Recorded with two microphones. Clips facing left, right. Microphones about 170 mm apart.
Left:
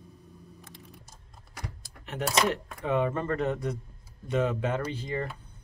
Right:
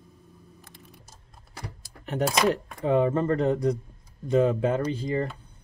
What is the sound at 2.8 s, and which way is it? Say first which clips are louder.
Speech: right 5 dB; 30° right (ahead or behind).